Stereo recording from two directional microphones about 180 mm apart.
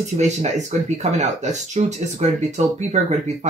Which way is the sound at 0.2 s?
40° right (ahead or behind).